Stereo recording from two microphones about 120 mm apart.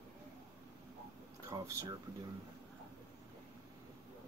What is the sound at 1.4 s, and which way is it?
Speech, 25° right (ahead or behind).